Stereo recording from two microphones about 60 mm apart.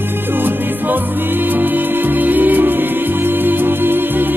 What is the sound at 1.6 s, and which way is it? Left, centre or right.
Music, right.